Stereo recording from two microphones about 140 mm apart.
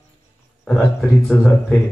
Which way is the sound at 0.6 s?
Centre (ahead or behind).